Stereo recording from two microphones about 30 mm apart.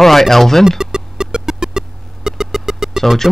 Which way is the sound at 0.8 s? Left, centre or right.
Right.